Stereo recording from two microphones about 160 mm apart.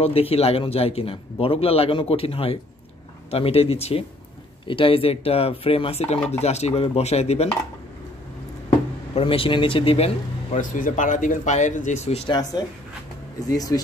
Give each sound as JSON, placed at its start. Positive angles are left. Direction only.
{"t": 0.0, "sound": "speech", "side_deg": 40}
{"t": 9.1, "sound": "speech", "side_deg": 35}
{"t": 12.3, "sound": "speech", "side_deg": 25}